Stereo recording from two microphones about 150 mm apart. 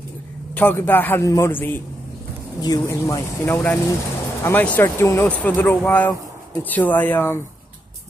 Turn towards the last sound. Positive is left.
turn(degrees=15)  # may be behind; listen again after turning